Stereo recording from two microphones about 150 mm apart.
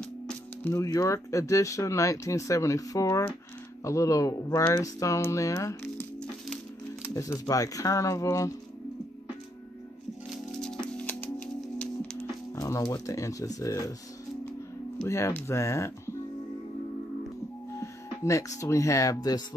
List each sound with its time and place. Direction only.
0.7 s speech: 20° left (ahead or behind)
7.2 s speech: 20° left (ahead or behind)
10.6 s music: 5° left (ahead or behind)
12.5 s speech: 20° left (ahead or behind)
15.0 s speech: 20° left (ahead or behind)
17.7 s music: 20° left (ahead or behind)
18.6 s speech: 20° left (ahead or behind)